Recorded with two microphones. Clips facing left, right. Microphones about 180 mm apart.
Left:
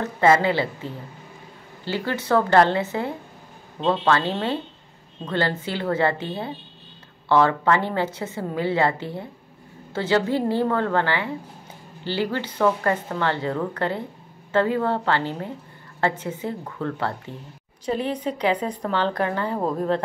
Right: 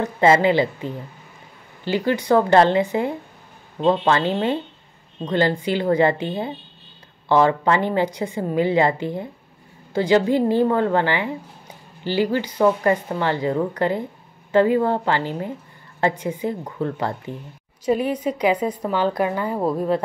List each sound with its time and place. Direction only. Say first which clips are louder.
0.0 s a woman's voice: right 2 dB; 15° right (ahead or behind)